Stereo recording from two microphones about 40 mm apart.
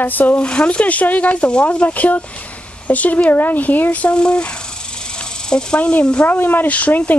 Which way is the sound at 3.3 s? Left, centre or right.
Left.